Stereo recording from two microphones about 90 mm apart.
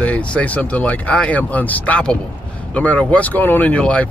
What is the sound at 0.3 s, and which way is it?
Speech, 15° left (ahead or behind).